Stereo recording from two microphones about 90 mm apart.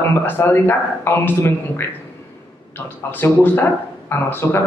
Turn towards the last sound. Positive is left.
turn(degrees=25)  # may be behind; listen again after turning